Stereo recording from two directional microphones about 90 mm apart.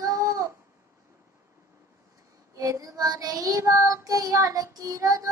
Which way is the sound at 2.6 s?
40° right (ahead or behind).